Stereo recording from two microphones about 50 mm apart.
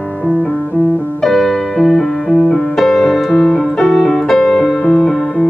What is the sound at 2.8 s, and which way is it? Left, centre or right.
Music, centre.